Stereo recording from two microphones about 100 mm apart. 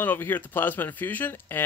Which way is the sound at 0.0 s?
20° left (ahead or behind).